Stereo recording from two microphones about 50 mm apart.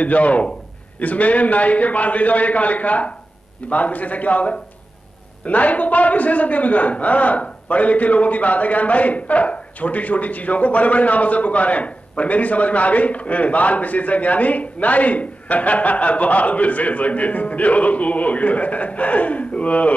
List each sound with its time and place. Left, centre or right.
0.0 s a man's voice: left